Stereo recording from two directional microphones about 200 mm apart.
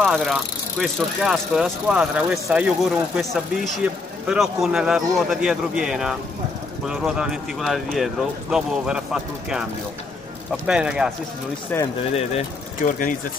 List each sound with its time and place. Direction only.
0.0 s speech: centre (ahead or behind)
10.7 s speech: 5° right (ahead or behind)
11.7 s speech: 10° left (ahead or behind)
12.8 s speech: 40° left (ahead or behind)